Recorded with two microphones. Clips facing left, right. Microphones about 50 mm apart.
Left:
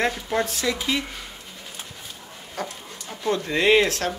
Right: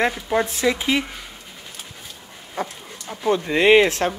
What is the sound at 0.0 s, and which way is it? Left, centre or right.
Speech, centre.